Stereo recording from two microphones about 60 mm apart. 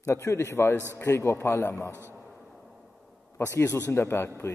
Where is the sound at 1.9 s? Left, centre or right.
Right.